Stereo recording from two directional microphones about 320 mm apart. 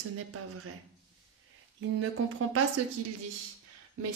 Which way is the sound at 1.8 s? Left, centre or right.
Right.